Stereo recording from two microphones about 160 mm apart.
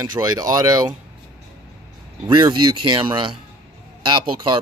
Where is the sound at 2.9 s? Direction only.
30° right (ahead or behind).